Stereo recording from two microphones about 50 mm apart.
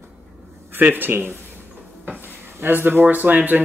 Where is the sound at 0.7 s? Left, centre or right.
Right.